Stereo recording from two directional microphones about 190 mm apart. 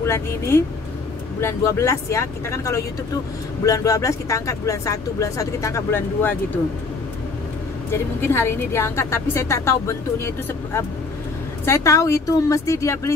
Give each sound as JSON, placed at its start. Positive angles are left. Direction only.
{"t": 0.0, "sound": "a woman's voice", "side_deg": 15}
{"t": 7.9, "sound": "a woman's voice", "side_deg": 10}